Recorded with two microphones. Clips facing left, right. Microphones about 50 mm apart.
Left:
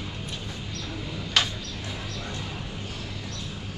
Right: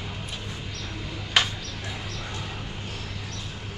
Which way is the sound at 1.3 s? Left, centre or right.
Centre.